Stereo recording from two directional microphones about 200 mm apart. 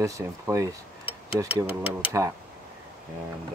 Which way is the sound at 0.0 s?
15° right (ahead or behind).